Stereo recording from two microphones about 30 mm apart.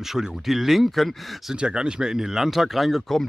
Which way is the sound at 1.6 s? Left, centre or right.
Right.